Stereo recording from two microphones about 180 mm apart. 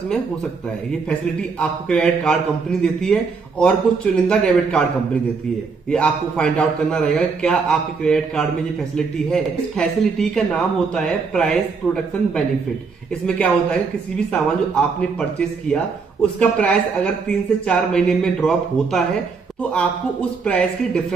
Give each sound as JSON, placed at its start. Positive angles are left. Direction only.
{"t": 1.6, "sound": "speech", "side_deg": 5}
{"t": 5.9, "sound": "speech", "side_deg": 5}
{"t": 14.8, "sound": "speech", "side_deg": 5}